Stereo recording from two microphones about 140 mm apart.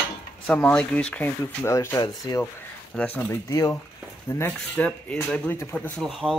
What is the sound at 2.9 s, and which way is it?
Speech, 10° left (ahead or behind).